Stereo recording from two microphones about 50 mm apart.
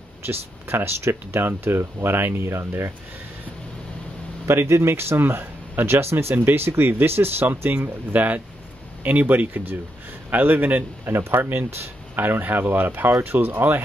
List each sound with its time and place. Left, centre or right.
0.3 s speech: right
4.5 s speech: right
6.3 s speech: right
7.8 s speech: right
11.1 s speech: right
12.2 s speech: right